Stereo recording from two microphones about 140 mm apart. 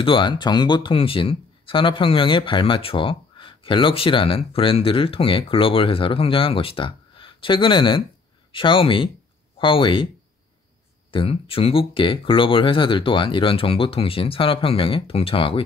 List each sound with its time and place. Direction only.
0.0 s speech: 35° left (ahead or behind)
11.1 s speech: 40° left (ahead or behind)